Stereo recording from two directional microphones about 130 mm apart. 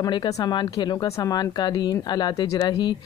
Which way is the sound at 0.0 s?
35° left (ahead or behind).